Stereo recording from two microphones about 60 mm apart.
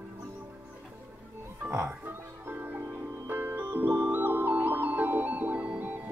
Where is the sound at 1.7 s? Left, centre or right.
Right.